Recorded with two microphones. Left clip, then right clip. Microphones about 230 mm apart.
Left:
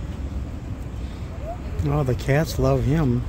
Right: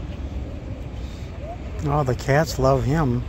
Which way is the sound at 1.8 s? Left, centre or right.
Centre.